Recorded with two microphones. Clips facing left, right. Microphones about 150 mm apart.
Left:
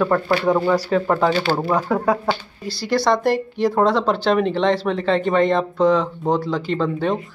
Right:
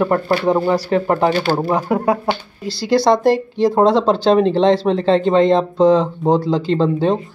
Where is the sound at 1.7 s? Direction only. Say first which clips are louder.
Right 2 dB; 10° right (ahead or behind).